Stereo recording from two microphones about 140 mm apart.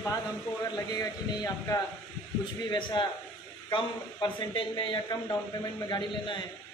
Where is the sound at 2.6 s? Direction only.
35° left (ahead or behind).